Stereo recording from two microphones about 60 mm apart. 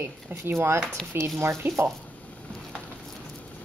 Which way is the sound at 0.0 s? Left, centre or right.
Right.